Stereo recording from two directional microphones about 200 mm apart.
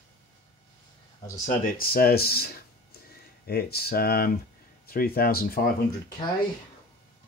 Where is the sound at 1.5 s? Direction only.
45° left (ahead or behind).